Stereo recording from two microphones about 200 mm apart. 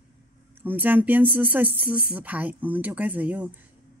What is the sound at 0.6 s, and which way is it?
Speech, 10° right (ahead or behind).